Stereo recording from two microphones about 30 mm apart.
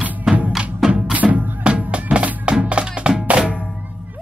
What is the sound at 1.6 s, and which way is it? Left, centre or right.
Music, right.